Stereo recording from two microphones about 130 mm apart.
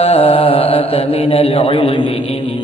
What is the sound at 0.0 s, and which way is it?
Mantra, 50° left (ahead or behind).